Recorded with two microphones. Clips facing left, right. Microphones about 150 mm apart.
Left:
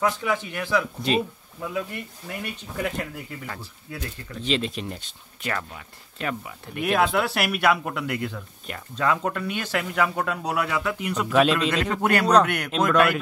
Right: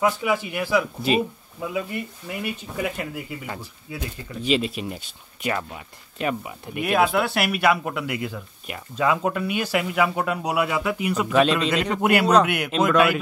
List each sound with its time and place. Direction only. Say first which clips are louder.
0.0 s speech: right 2 dB; 10° right (ahead or behind)
6.8 s speech: right 1 dB; 5° right (ahead or behind)